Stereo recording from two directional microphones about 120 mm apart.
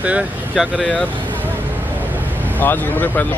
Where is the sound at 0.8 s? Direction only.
10° left (ahead or behind).